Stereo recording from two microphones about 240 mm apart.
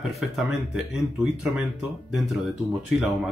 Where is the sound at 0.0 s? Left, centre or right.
Centre.